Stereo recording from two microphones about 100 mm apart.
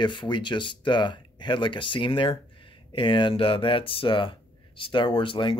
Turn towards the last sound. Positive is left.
turn(degrees=60)  # may be behind; listen again after turning